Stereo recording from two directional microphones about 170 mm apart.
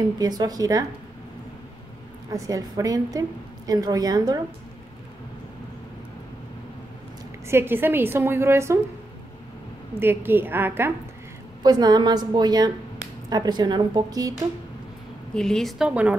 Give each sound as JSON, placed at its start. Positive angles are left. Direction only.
{"t": 0.2, "sound": "a woman's voice", "side_deg": -25}
{"t": 2.3, "sound": "a woman's voice", "side_deg": -20}
{"t": 7.4, "sound": "a woman's voice", "side_deg": -15}
{"t": 9.9, "sound": "a woman's voice", "side_deg": -10}
{"t": 11.6, "sound": "a woman's voice", "side_deg": -25}
{"t": 15.3, "sound": "a woman's voice", "side_deg": 0}